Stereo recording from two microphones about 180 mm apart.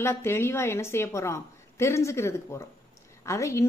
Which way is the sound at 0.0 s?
15° left (ahead or behind).